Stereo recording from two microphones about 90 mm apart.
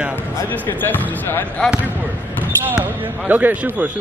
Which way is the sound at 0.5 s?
20° left (ahead or behind).